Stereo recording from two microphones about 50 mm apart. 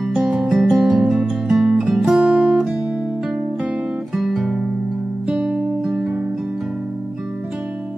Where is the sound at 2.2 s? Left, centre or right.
Right.